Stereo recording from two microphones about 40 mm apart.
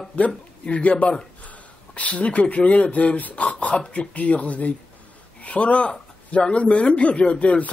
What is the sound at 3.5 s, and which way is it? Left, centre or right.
Speech, left.